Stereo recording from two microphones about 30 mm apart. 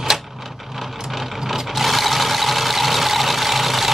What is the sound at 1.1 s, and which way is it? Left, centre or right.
Ratchet, centre.